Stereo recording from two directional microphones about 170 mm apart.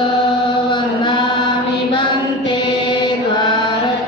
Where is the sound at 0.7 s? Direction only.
25° left (ahead or behind).